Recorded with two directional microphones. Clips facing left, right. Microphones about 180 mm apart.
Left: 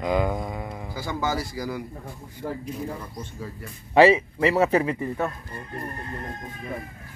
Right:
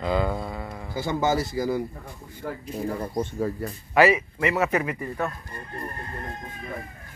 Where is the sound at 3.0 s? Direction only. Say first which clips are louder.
Right 10 dB; 50° right (ahead or behind).